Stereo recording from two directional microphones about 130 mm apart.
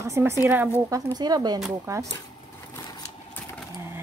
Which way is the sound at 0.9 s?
30° right (ahead or behind).